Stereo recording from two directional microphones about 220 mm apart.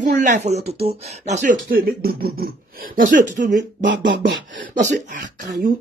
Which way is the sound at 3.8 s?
55° right (ahead or behind).